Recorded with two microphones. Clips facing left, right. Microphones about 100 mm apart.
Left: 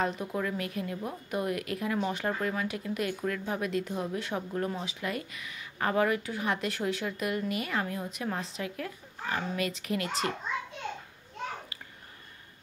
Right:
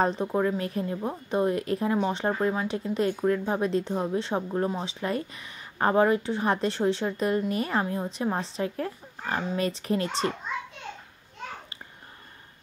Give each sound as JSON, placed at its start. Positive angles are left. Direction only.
{"t": 0.0, "sound": "a woman's voice", "side_deg": -35}